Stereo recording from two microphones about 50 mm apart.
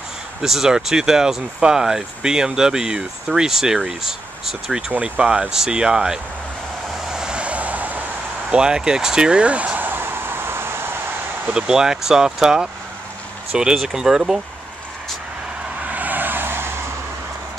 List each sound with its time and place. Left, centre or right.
0.4 s speech: centre
4.9 s speech: right
7.1 s vehicle: centre; by 8.0 s right
8.5 s speech: centre
9.8 s vehicle: right
11.5 s speech: centre
15.8 s vehicle: right